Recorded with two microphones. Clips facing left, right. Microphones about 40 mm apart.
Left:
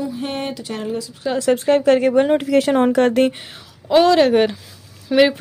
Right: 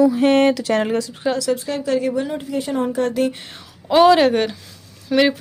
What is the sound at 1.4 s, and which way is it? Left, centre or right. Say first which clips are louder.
A woman's voice: left 6 dB; left.